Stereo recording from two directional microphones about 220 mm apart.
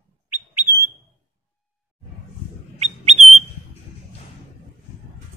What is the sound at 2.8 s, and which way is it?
Bird, 30° right (ahead or behind).